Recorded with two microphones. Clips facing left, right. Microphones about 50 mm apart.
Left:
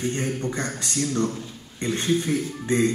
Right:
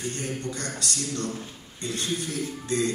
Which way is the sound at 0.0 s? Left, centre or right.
Left.